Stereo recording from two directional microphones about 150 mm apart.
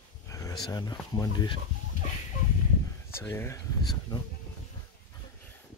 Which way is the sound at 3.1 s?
15° left (ahead or behind).